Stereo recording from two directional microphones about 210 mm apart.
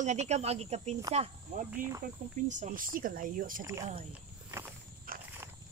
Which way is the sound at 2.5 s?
35° right (ahead or behind).